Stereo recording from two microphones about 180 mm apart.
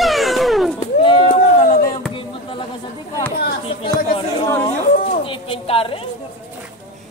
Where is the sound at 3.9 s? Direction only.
30° left (ahead or behind).